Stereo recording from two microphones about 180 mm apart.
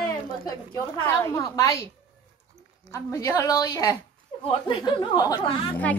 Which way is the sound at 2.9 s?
15° left (ahead or behind).